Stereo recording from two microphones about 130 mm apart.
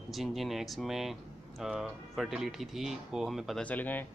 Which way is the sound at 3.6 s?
15° left (ahead or behind).